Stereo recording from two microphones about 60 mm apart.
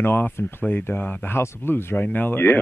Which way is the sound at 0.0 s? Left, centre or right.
Left.